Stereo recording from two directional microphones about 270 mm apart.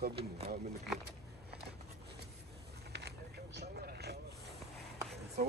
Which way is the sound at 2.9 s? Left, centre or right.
Right.